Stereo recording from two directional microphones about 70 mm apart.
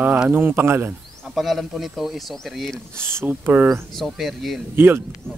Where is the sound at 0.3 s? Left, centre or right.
Right.